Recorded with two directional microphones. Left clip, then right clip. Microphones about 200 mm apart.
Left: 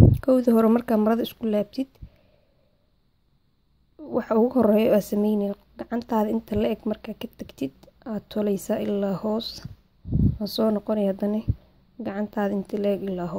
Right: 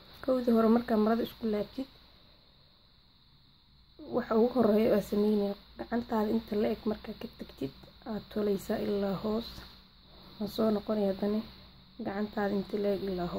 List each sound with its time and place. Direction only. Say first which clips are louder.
0.2 s speech: left 3 dB; 30° left (ahead or behind)
4.1 s speech: left 6 dB; 30° left (ahead or behind)